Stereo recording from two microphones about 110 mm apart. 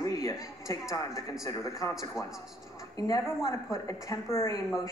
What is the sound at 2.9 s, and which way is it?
A woman's voice, 35° left (ahead or behind).